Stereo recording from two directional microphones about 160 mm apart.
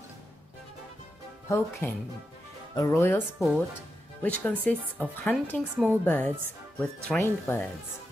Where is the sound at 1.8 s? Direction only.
15° left (ahead or behind).